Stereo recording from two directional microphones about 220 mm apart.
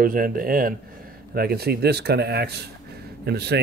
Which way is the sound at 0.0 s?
40° right (ahead or behind).